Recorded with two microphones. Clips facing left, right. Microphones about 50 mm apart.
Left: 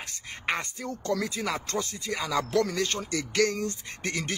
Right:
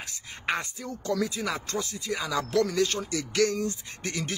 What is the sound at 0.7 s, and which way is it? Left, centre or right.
Speech, left.